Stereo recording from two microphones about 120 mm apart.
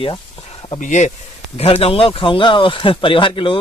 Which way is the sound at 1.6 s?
55° left (ahead or behind).